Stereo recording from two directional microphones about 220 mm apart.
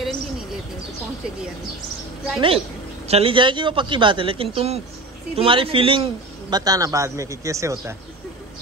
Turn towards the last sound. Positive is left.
turn(degrees=-15)  # may be behind; listen again after turning